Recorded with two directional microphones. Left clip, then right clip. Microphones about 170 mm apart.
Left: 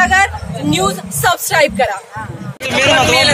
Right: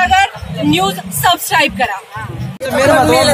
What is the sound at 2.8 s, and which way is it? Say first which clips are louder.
Speech: right 1 dB; 40° right (ahead or behind).